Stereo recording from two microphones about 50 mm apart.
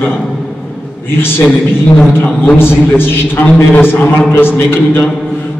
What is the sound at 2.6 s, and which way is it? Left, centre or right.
A man's voice, left.